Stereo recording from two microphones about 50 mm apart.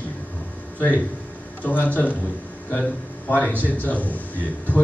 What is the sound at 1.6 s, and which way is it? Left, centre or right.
A man's voice, left.